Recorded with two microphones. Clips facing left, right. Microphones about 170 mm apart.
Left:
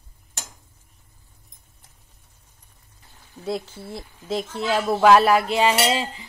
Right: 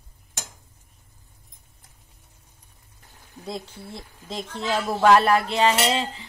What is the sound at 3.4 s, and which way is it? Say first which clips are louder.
Speech: left 6 dB; 5° left (ahead or behind).